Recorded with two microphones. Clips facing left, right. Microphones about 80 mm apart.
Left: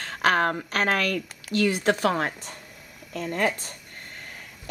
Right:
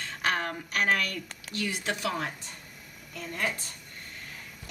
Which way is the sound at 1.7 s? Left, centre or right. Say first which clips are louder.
Left 8 dB; left.